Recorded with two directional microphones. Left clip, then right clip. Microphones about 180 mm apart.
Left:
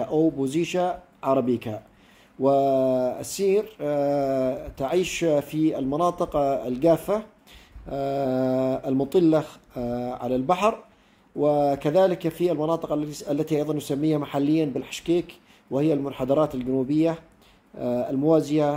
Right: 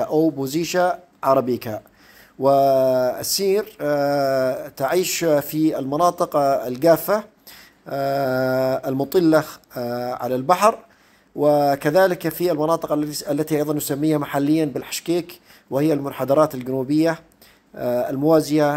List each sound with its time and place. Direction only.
0.0 s mantra: 15° right (ahead or behind)